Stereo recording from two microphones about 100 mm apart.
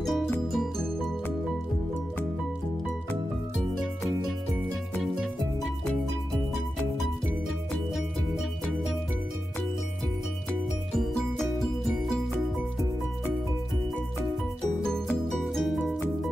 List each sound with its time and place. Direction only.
0.0 s music: centre (ahead or behind)
3.7 s music: centre (ahead or behind)
10.9 s music: 5° left (ahead or behind)
14.8 s music: 5° left (ahead or behind)